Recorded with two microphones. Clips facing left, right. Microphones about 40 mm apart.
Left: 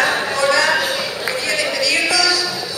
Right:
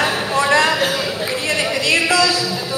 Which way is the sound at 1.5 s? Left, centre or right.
Right.